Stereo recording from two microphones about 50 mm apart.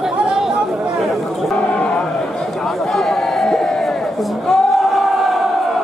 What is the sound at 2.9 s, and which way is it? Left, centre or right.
Crowd, centre.